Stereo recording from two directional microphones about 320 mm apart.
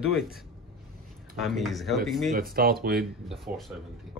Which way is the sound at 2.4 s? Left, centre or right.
Right.